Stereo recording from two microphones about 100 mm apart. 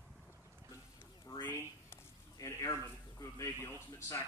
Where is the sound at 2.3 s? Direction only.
30° left (ahead or behind).